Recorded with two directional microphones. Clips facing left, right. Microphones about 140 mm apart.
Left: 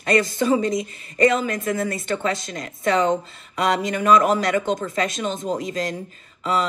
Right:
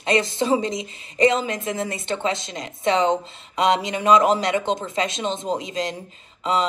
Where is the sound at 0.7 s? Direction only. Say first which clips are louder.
Left 5 dB; 50° left (ahead or behind).